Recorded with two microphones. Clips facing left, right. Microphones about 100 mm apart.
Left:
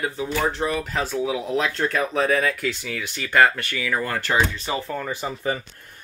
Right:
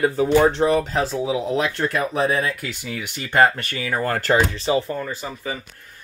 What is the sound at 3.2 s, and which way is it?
Speech, 30° right (ahead or behind).